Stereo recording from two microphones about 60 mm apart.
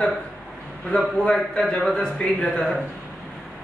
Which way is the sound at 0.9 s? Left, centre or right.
Centre.